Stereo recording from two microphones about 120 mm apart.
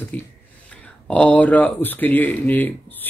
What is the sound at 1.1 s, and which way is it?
Speech, 10° left (ahead or behind).